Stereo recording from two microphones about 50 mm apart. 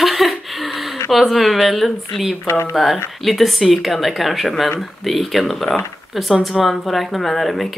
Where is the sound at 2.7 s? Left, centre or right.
Centre.